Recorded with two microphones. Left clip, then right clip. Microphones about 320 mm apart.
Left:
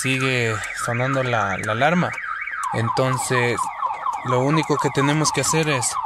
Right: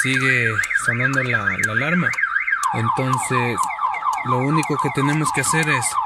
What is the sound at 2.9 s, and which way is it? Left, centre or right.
Speech, left.